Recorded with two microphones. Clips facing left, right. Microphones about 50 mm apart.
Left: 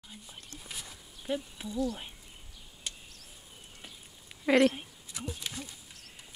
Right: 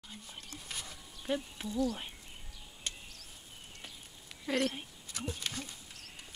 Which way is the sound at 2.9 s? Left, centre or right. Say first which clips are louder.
Even; centre.